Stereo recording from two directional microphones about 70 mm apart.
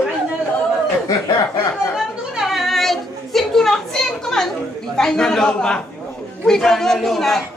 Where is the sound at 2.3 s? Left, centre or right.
Centre.